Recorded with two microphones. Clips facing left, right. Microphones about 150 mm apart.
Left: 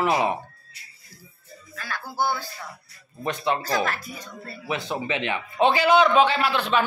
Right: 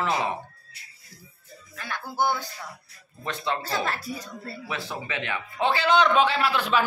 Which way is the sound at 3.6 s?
25° right (ahead or behind).